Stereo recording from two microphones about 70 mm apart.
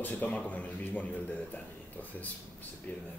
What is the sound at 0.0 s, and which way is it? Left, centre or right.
A man's voice, left.